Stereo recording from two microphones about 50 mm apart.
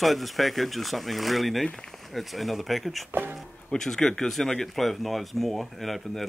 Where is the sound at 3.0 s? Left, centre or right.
Right.